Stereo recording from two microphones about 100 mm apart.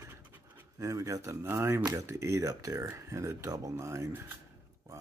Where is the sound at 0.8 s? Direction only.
30° right (ahead or behind).